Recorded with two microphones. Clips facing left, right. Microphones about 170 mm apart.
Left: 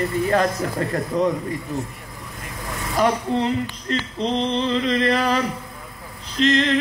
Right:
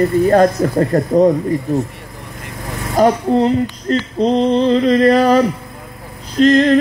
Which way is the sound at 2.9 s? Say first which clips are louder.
Right 8 dB; 40° right (ahead or behind).